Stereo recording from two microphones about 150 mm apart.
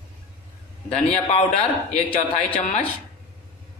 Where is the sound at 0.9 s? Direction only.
45° left (ahead or behind).